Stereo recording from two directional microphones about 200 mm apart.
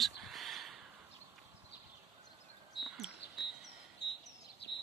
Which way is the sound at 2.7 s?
Centre (ahead or behind).